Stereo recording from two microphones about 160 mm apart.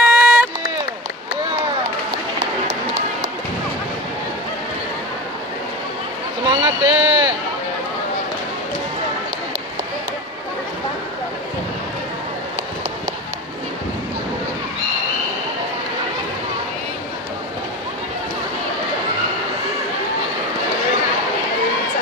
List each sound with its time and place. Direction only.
0.0 s run: 5° right (ahead or behind)
2.7 s run: 45° right (ahead or behind)
6.4 s a sound: 30° right (ahead or behind)